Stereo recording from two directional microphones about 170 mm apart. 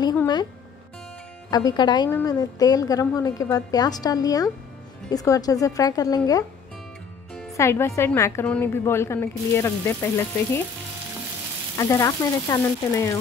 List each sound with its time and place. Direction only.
1.5 s a woman's voice: 25° left (ahead or behind)
7.5 s a woman's voice: 15° left (ahead or behind)
11.8 s a woman's voice: 20° left (ahead or behind)